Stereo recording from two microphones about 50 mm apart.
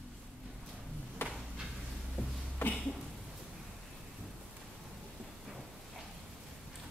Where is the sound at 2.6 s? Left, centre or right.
Left.